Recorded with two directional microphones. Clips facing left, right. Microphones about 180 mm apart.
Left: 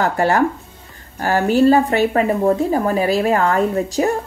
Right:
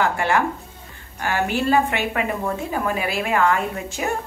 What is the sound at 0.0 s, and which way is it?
Speech, 40° left (ahead or behind).